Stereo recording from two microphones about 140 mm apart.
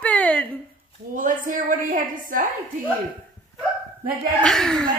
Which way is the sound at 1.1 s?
70° right (ahead or behind).